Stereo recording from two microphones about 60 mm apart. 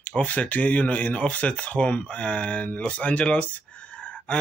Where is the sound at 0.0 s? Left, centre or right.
Left.